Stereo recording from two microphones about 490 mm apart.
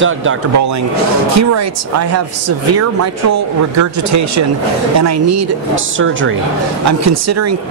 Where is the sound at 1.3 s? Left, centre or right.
Right.